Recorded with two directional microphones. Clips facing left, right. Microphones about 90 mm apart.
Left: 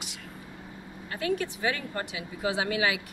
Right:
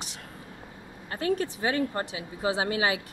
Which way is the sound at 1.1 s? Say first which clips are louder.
Right 2 dB; 35° right (ahead or behind).